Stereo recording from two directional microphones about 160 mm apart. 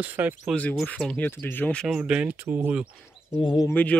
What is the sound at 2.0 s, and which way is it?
Speech, 5° right (ahead or behind).